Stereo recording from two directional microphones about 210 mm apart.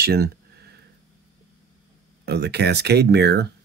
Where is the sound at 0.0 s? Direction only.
50° right (ahead or behind).